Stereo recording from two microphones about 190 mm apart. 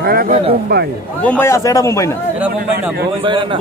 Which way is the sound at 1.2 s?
10° left (ahead or behind).